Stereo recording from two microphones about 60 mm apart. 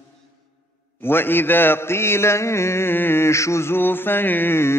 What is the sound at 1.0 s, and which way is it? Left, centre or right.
Mantra, left.